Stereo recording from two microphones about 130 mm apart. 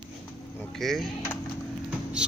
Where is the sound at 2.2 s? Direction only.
5° right (ahead or behind).